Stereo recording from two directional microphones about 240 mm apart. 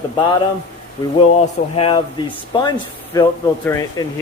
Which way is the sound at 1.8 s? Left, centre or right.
Centre.